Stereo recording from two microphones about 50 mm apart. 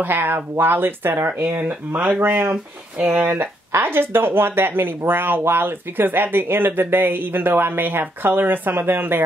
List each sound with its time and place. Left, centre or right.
0.0 s speech: right
3.0 s speech: right
3.3 s speech: right